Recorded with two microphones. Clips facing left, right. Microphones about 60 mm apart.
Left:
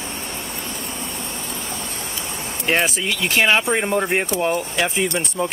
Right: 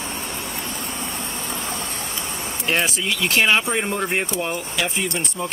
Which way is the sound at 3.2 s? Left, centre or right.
Centre.